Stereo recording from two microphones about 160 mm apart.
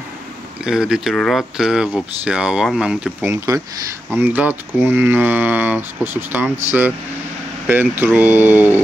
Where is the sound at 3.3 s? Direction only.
20° right (ahead or behind).